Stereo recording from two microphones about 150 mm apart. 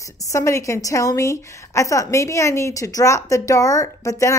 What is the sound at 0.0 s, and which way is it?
A woman's voice, 20° left (ahead or behind).